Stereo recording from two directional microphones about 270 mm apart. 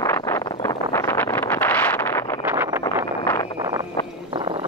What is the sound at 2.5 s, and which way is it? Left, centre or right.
Vehicle, centre.